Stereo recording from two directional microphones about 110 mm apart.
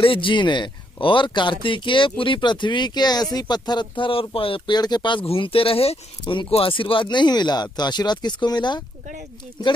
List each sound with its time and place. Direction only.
0.0 s speech: 50° left (ahead or behind)
5.2 s speech: 60° left (ahead or behind); by 8.8 s 40° left (ahead or behind)